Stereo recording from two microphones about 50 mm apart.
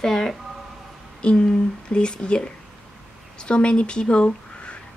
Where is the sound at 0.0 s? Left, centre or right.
Centre.